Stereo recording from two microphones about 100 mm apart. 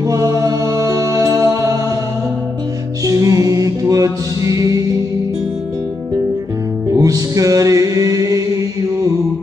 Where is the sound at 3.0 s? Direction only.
35° right (ahead or behind).